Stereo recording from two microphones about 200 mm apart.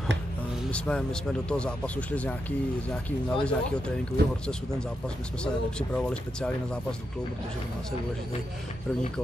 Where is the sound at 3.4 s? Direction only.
5° left (ahead or behind).